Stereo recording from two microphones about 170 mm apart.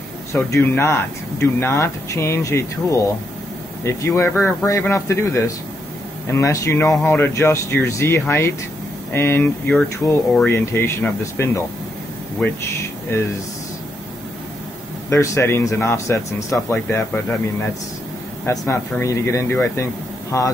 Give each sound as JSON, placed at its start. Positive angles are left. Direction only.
{"t": 0.3, "sound": "speech", "side_deg": 15}
{"t": 13.1, "sound": "speech", "side_deg": 15}
{"t": 15.0, "sound": "speech", "side_deg": 15}
{"t": 18.4, "sound": "speech", "side_deg": 15}